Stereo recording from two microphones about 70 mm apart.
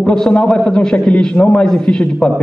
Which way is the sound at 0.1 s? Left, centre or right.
Centre.